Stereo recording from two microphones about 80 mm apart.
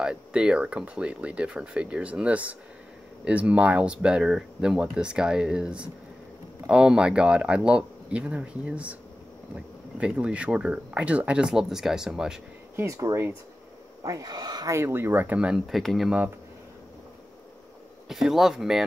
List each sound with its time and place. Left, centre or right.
0.0 s speech: centre
9.9 s speech: centre
12.7 s speech: right
14.0 s speech: right
14.7 s speech: right
15.3 s speech: centre
15.6 s speech: centre
18.0 s speech: centre